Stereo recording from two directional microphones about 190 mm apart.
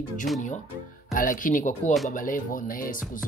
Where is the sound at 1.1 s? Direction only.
45° left (ahead or behind).